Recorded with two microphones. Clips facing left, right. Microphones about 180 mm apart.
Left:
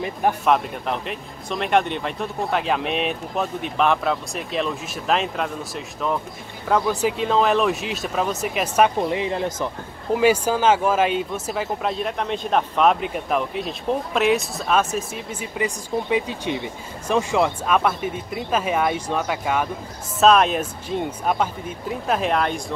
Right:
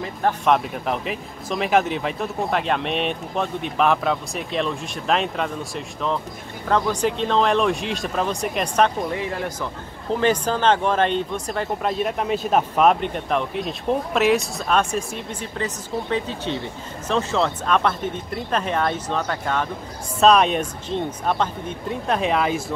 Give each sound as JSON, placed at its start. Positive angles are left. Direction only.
{"t": 0.5, "sound": "speech", "side_deg": 0}
{"t": 9.1, "sound": "speech", "side_deg": 20}
{"t": 10.1, "sound": "speech", "side_deg": 10}